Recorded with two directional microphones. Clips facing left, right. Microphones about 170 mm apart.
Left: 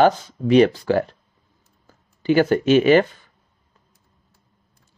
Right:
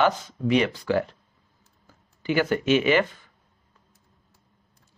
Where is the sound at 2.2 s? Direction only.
35° left (ahead or behind).